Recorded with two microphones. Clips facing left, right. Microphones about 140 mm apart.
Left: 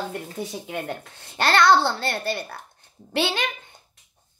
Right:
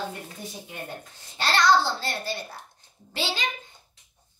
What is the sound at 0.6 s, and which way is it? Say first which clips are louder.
A child's voice: left 7 dB; 80° left.